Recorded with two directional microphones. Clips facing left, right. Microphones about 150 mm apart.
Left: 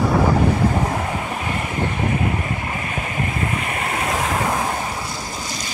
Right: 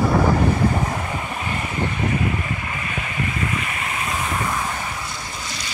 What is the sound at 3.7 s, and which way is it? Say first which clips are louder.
Waves: left 4 dB; 50° left (ahead or behind).